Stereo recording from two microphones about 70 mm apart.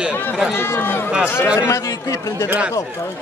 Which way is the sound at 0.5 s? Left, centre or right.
Left.